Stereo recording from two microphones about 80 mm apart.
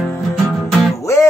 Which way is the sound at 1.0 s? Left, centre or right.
Left.